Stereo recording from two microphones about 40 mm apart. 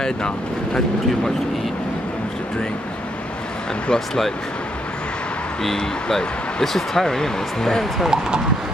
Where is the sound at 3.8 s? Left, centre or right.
Centre.